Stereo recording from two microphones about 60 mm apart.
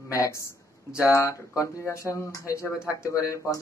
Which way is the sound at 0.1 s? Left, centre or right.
Left.